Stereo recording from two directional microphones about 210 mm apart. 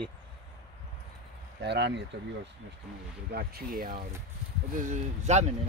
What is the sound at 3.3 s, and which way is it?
Speech, 45° right (ahead or behind).